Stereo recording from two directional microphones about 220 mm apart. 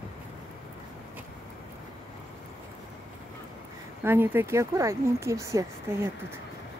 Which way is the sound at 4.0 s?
10° right (ahead or behind).